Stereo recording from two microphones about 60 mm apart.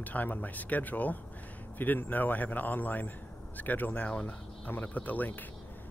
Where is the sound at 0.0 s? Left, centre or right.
Left.